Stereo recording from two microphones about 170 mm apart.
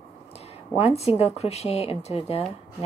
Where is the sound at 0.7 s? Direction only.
40° left (ahead or behind).